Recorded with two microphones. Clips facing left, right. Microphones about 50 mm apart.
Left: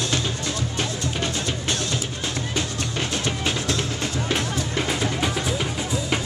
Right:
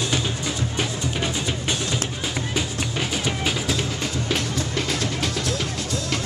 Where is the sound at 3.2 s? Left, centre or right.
Centre.